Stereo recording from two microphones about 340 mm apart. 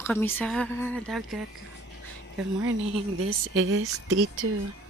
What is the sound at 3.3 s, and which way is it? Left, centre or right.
Speech, right.